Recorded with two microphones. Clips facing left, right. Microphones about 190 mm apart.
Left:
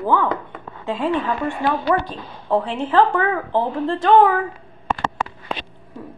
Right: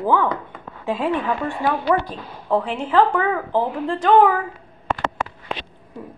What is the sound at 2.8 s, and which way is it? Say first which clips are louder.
Speech: even; 5° right (ahead or behind).